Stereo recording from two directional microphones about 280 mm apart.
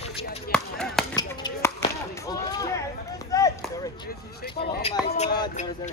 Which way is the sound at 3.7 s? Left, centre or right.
Centre.